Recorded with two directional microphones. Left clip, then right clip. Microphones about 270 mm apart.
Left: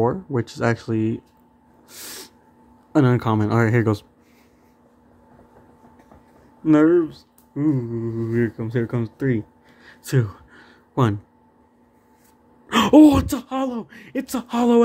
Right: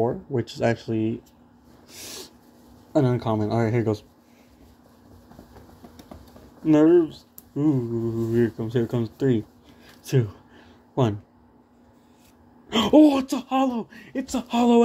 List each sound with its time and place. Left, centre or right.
0.0 s speech: left
0.9 s speech: left
1.9 s snort: left
2.9 s speech: left
6.6 s speech: centre
10.0 s a sound: left
12.6 s speech: left